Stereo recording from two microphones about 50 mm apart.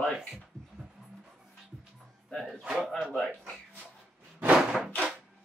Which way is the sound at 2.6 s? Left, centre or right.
Centre.